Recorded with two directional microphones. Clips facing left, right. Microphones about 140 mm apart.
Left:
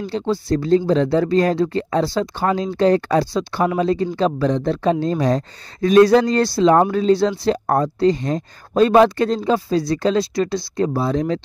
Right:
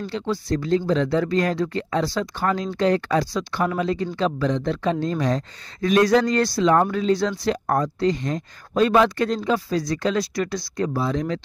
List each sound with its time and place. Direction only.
0.1 s speech: 30° left (ahead or behind)